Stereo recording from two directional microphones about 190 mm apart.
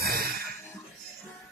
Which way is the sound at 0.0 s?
50° right (ahead or behind).